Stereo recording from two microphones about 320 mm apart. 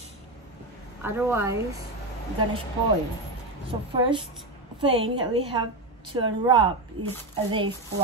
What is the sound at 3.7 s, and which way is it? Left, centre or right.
Speech, centre.